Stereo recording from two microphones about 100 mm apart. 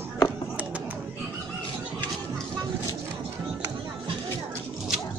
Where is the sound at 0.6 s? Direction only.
15° right (ahead or behind).